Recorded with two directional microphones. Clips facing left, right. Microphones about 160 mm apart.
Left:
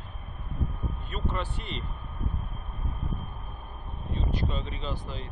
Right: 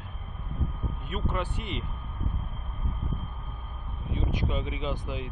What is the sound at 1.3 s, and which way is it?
Speech, 10° right (ahead or behind).